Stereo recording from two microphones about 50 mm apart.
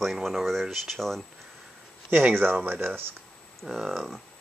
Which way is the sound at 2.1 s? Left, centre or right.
Right.